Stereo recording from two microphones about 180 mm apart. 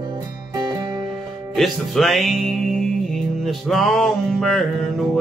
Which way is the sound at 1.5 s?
Centre (ahead or behind).